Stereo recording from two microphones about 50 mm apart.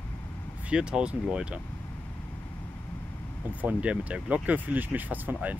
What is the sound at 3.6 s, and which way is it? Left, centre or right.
Speech, right.